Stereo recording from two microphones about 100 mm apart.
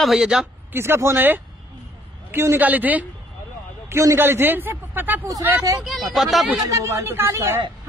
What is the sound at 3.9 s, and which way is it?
A man's voice, 30° right (ahead or behind).